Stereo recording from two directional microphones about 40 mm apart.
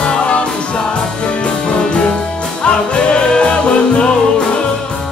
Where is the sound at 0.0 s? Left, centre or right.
Left.